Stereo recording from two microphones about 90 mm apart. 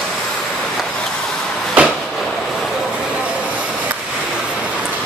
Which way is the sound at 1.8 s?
15° right (ahead or behind).